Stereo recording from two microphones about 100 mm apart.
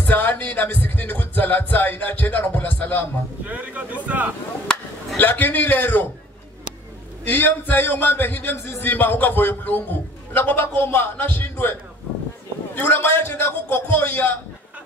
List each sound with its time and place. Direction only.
0.0 s speech: 15° left (ahead or behind)
3.4 s speech: 15° right (ahead or behind)
4.6 s chop: 10° left (ahead or behind)
5.3 s speech: 20° left (ahead or behind)
7.2 s a man's voice: 20° left (ahead or behind)